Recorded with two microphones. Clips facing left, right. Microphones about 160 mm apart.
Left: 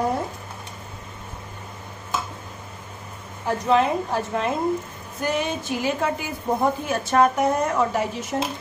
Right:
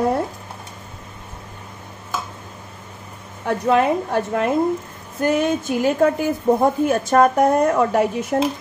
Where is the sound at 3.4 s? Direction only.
60° right (ahead or behind).